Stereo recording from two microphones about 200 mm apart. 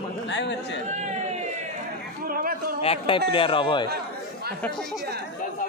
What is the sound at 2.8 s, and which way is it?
A man's voice, 25° left (ahead or behind).